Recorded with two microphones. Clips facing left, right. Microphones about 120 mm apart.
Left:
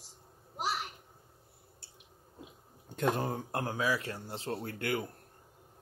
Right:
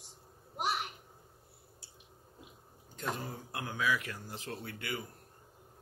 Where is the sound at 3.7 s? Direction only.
35° left (ahead or behind); by 5.0 s 50° left (ahead or behind).